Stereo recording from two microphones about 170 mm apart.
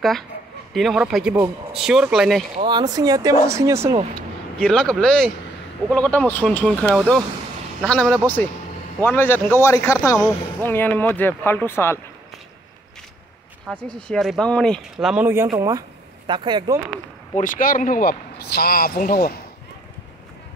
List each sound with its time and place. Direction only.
0.7 s speech: 5° right (ahead or behind)
2.5 s speech: 25° right (ahead or behind)
4.6 s speech: 5° left (ahead or behind)
13.7 s speech: 5° left (ahead or behind)
15.2 s speech: 15° right (ahead or behind)
17.4 s speech: 55° left (ahead or behind)